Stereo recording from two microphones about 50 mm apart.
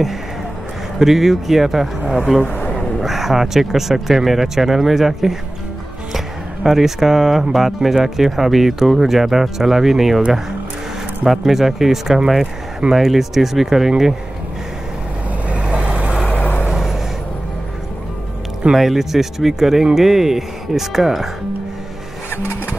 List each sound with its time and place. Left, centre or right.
0.9 s speech: centre
2.4 s speech: left
3.0 s speech: centre
11.2 s speech: centre
15.4 s vehicle: right
16.1 s vehicle: left
16.7 s vehicle: centre
18.7 s speech: centre
22.3 s vehicle: left